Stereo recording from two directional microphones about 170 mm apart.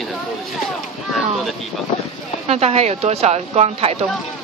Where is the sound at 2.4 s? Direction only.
40° right (ahead or behind).